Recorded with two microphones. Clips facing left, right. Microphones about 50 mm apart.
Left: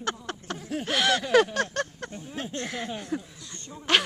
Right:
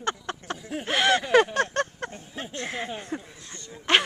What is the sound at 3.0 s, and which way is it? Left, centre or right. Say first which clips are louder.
Speech: left 2 dB; right.